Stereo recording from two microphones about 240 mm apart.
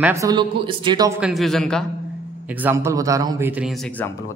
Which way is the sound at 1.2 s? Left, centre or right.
Centre.